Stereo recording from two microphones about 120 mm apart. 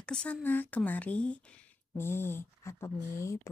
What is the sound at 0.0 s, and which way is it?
Speech, 10° left (ahead or behind).